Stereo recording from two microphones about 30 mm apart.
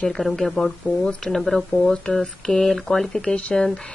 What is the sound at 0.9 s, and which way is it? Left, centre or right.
Speech, right.